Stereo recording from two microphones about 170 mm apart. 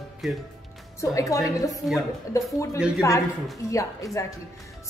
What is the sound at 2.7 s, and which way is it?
Speech, 5° right (ahead or behind).